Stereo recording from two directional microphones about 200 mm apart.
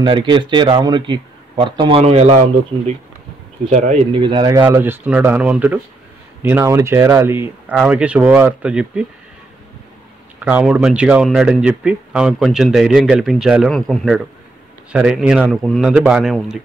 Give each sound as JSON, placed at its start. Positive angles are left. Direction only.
{"t": 0.0, "sound": "speech", "side_deg": -25}
{"t": 3.7, "sound": "speech", "side_deg": -35}
{"t": 4.2, "sound": "speech", "side_deg": -25}
{"t": 4.6, "sound": "speech", "side_deg": -10}
{"t": 10.4, "sound": "speech", "side_deg": -5}